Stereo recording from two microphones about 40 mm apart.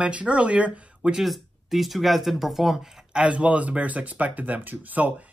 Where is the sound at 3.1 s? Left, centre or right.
Right.